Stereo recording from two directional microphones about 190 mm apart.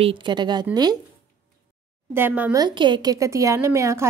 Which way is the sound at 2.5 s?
25° right (ahead or behind).